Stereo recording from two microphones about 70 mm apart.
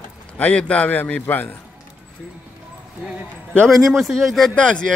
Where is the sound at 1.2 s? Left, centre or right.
Left.